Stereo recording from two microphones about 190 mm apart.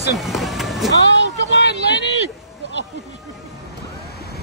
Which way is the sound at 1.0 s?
70° left (ahead or behind).